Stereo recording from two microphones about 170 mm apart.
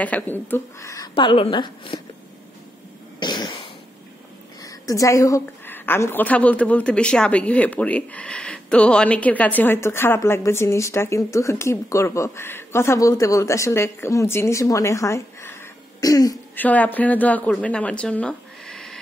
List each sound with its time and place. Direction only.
0.0 s a woman's voice: 10° left (ahead or behind)
1.1 s a woman's voice: 30° left (ahead or behind)
3.2 s cough: 25° left (ahead or behind)
4.6 s a woman's voice: 20° left (ahead or behind)
16.5 s a woman's voice: 10° left (ahead or behind)